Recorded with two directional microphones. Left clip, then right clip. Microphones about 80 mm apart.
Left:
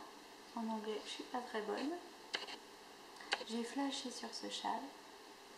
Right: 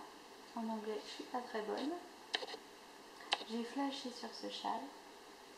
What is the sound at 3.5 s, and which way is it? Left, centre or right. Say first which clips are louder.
Speech: even; left.